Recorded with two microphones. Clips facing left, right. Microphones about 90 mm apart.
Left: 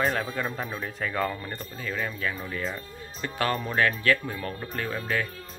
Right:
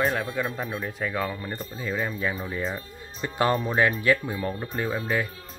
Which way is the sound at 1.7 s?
20° right (ahead or behind).